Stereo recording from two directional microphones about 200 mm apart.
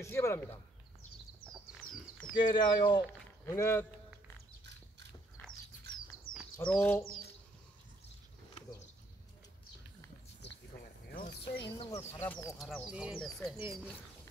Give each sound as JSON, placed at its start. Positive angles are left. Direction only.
{"t": 0.0, "sound": "speech", "side_deg": 15}
{"t": 1.8, "sound": "a sound", "side_deg": 90}
{"t": 2.3, "sound": "speech", "side_deg": 20}
{"t": 6.3, "sound": "bird", "side_deg": 80}
{"t": 6.6, "sound": "speech", "side_deg": 10}
{"t": 11.1, "sound": "a sound", "side_deg": 50}
{"t": 11.6, "sound": "speech", "side_deg": 20}
{"t": 12.9, "sound": "speech", "side_deg": -5}